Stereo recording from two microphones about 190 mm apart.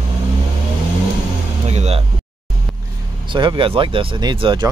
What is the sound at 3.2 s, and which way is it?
Speech, 25° right (ahead or behind).